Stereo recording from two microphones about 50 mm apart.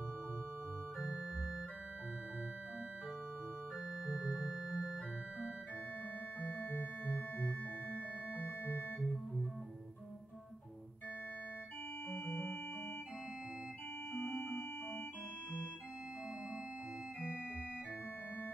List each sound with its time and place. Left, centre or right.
1.1 s music: centre
4.0 s music: centre
6.4 s music: left
9.0 s organ: centre
12.1 s organ: left
14.1 s organ: left